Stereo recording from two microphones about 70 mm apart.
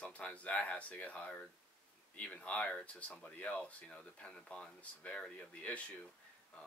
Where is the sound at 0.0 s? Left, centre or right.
Centre.